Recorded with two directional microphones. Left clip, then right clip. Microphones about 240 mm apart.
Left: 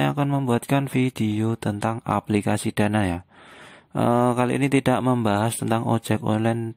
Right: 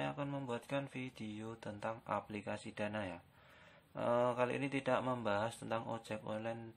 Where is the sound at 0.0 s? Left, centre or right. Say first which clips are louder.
Left 18 dB; left.